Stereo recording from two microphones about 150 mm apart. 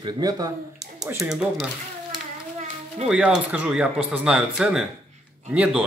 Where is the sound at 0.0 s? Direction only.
25° right (ahead or behind).